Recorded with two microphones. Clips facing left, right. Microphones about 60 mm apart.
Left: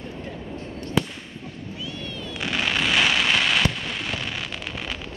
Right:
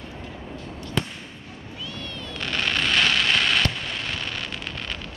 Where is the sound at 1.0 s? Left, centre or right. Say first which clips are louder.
Left 4 dB; centre.